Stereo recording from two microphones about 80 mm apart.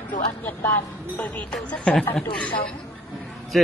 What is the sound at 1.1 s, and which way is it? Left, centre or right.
Speech, centre.